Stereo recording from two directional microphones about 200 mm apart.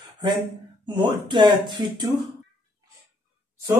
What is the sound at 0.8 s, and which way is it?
Speech, 25° right (ahead or behind).